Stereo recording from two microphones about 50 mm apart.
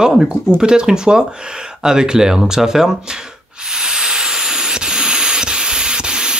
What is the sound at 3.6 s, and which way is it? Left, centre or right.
Steam, centre.